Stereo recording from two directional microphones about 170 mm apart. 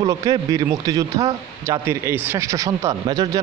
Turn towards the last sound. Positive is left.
turn(degrees=-25)  # may be behind; listen again after turning